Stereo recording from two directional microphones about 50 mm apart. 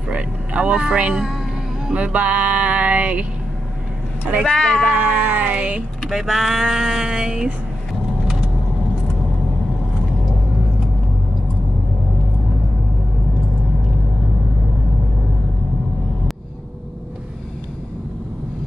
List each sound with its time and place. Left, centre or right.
0.1 s music: right
4.4 s speech: centre
4.9 s a sound: right
6.0 s speech: centre